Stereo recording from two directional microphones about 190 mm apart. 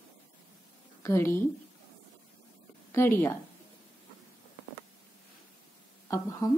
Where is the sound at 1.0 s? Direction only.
15° left (ahead or behind).